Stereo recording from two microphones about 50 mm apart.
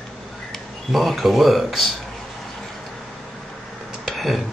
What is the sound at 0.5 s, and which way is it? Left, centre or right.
Speech, centre.